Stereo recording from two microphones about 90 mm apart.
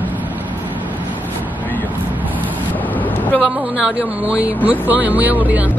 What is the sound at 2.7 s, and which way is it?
Vehicle, 20° left (ahead or behind).